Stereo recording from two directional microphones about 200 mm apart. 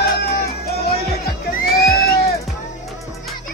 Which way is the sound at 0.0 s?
50° left (ahead or behind).